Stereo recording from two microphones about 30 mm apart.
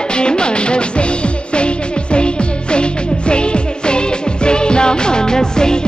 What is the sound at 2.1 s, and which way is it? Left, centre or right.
Music, left.